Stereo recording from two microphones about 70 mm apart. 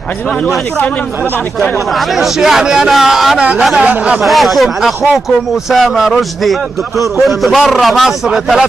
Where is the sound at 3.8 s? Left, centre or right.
Centre.